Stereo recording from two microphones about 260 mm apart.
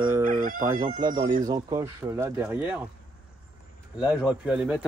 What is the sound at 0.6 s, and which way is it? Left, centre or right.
Speech, centre.